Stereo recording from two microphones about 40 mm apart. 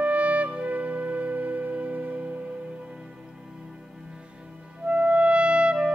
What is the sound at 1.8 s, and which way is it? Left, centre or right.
Music, right.